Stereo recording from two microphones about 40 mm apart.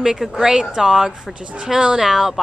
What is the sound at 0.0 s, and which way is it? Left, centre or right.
Speech, centre.